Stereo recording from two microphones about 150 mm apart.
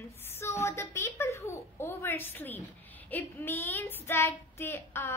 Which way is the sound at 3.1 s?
15° left (ahead or behind).